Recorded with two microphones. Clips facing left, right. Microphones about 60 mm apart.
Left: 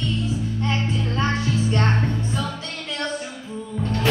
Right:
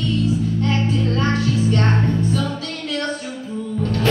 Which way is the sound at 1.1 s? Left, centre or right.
Left.